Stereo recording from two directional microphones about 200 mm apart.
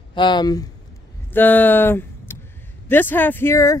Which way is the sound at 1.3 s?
10° left (ahead or behind).